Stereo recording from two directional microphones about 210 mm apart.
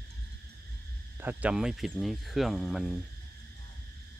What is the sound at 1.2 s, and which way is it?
Speech, 10° right (ahead or behind).